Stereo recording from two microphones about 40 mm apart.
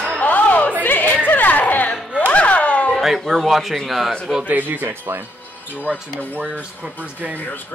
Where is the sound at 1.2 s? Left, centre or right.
Left.